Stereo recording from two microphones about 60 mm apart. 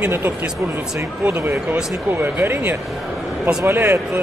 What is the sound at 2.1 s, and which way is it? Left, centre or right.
A man's voice, right.